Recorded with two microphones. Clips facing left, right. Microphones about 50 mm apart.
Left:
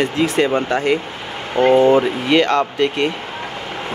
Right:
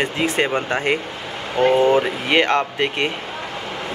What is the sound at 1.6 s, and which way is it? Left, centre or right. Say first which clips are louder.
Speech: left 3 dB; left.